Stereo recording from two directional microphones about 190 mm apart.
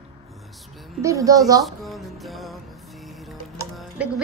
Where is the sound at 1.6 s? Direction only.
Centre (ahead or behind).